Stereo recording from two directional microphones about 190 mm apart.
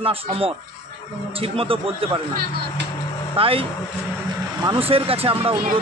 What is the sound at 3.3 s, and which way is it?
A man's voice, 30° right (ahead or behind).